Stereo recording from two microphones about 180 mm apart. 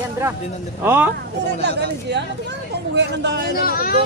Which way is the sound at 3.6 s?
55° left (ahead or behind).